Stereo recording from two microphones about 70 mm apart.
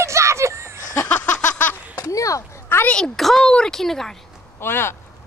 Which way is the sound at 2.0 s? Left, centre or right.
Left.